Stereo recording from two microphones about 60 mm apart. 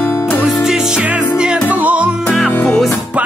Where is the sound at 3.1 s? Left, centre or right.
Right.